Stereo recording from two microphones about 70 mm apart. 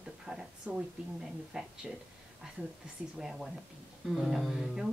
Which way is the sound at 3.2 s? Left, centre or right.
Centre.